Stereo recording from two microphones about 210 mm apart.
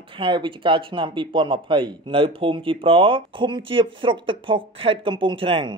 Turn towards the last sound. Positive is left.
turn(degrees=-25)  # may be behind; listen again after turning